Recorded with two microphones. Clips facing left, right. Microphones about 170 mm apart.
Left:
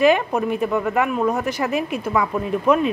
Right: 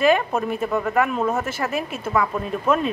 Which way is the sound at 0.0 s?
15° left (ahead or behind).